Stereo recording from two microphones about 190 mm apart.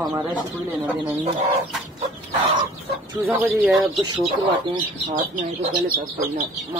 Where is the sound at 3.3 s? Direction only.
5° right (ahead or behind).